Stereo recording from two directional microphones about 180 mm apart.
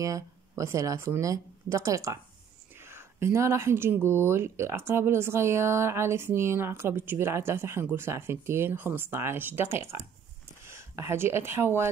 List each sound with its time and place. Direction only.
0.0 s speech: 20° right (ahead or behind)